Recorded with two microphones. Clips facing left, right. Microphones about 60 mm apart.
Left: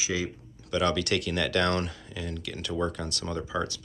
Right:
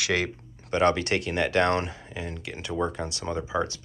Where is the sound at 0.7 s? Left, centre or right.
Right.